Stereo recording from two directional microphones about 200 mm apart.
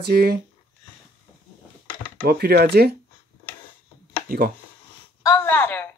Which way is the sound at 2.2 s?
50° right (ahead or behind).